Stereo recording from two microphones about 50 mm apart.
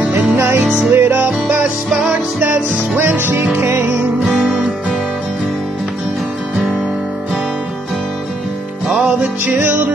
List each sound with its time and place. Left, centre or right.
0.1 s music: right
1.1 s music: right
3.0 s music: right
9.6 s music: right